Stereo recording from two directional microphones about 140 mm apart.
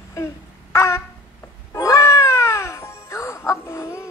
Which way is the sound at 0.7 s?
20° left (ahead or behind).